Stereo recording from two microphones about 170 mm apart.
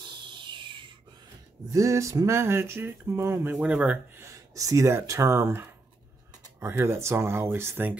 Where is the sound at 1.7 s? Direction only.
20° right (ahead or behind).